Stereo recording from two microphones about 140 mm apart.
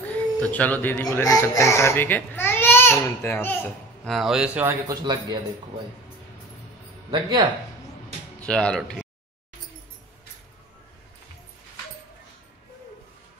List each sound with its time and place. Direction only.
0.1 s speech: 10° left (ahead or behind)
1.2 s speech: 25° left (ahead or behind)
4.1 s speech: 5° right (ahead or behind)
4.6 s a man's voice: 25° right (ahead or behind)
7.1 s a man's voice: 30° right (ahead or behind)
8.5 s speech: 5° left (ahead or behind)